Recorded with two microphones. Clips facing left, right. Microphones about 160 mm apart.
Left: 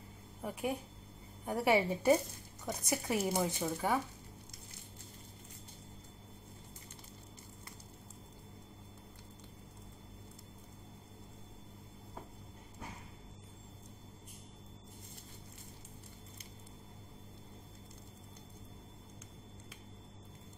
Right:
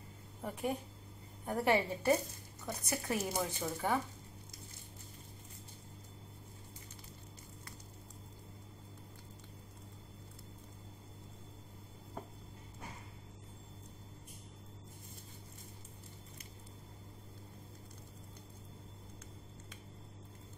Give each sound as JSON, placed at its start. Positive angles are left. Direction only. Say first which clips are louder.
{"t": 0.4, "sound": "a woman's voice", "louder": "even", "side_deg": 5}